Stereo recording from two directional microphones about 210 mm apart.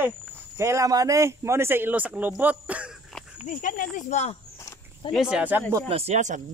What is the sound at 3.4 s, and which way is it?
Speech, 40° left (ahead or behind).